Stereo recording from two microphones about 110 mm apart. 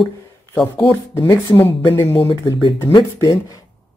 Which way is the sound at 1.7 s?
55° left (ahead or behind).